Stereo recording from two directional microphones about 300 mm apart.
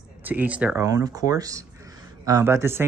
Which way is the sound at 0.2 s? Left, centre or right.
Centre.